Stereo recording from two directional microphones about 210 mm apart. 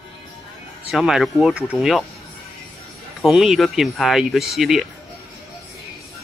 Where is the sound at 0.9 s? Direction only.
Centre (ahead or behind).